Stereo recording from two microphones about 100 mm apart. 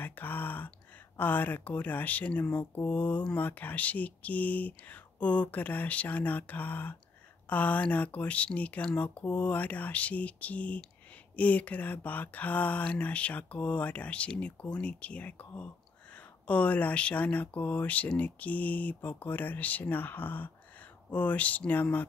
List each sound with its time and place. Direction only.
0.0 s speech: 20° left (ahead or behind)